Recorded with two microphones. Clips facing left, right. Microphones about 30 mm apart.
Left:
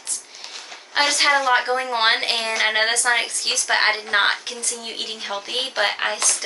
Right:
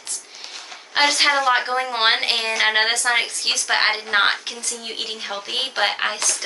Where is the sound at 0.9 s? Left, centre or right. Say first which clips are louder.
Right 1 dB; centre.